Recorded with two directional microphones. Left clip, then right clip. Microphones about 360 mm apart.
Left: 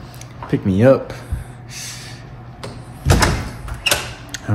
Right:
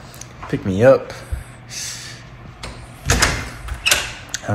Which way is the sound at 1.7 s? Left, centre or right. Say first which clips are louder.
Right 2 dB; centre.